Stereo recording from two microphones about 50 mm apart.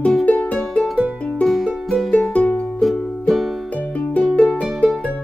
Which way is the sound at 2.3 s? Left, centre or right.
Left.